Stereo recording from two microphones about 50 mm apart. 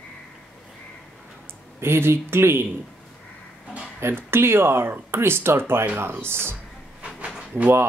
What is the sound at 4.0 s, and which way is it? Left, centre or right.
Speech, right.